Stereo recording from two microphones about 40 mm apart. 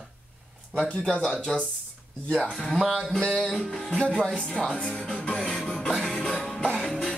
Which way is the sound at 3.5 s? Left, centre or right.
Centre.